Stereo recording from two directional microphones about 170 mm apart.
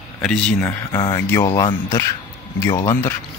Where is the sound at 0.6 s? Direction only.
20° left (ahead or behind).